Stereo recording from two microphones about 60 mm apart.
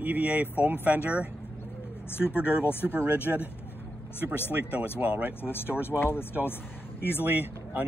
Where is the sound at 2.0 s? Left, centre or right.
Left.